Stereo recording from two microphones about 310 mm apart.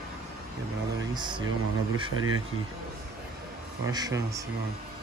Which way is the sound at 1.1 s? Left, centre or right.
Centre.